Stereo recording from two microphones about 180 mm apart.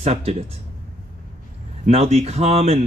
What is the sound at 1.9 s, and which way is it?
Speech, 35° right (ahead or behind).